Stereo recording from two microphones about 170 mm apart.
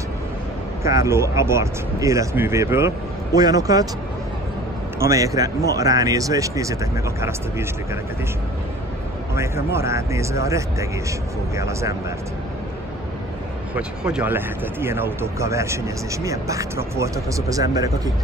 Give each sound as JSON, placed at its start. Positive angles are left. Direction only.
{"t": 0.8, "sound": "speech", "side_deg": -15}
{"t": 4.9, "sound": "speech", "side_deg": -15}
{"t": 9.7, "sound": "speech", "side_deg": -15}
{"t": 13.7, "sound": "speech", "side_deg": -5}